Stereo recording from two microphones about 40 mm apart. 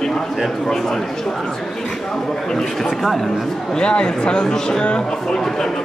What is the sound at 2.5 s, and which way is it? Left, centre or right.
Speech, centre.